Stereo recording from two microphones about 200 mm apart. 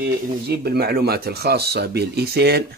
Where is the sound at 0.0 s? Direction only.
50° right (ahead or behind).